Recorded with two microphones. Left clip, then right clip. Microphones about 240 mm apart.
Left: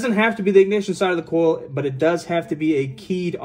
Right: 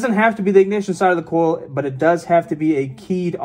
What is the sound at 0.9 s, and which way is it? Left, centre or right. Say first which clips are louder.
Speech: right 8 dB; centre.